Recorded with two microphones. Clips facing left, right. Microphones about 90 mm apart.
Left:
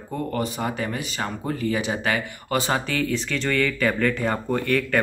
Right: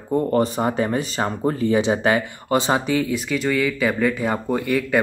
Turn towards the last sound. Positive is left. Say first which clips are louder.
# right 2 dB
turn(degrees=-10)  # may be behind; listen again after turning